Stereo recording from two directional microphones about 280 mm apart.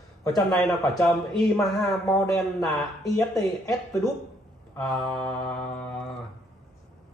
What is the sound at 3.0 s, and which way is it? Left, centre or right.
Speech, centre.